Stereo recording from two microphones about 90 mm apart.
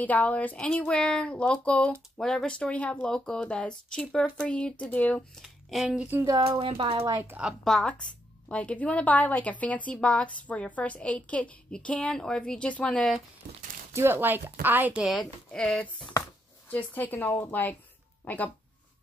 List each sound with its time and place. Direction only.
0.0 s speech: 20° left (ahead or behind)
5.4 s speech: centre (ahead or behind)
5.9 s speech: 20° right (ahead or behind)
6.6 s speech: 90° right
7.2 s speech: 20° right (ahead or behind)
7.6 s speech: 5° left (ahead or behind)
13.9 s speech: 25° right (ahead or behind)
15.0 s speech: 5° left (ahead or behind)
16.7 s speech: 20° left (ahead or behind)